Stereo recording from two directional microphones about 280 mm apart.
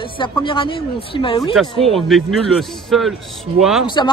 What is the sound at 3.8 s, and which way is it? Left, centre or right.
Speech, centre.